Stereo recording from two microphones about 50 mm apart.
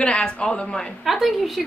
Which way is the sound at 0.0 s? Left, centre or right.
Centre.